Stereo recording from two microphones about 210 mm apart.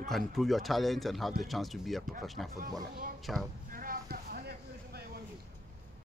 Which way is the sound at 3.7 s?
45° right (ahead or behind).